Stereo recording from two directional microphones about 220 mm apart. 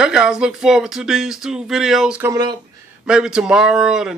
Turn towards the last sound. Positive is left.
turn(degrees=0)  # may be behind; listen again after turning